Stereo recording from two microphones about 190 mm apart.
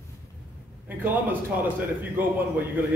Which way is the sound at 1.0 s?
10° right (ahead or behind).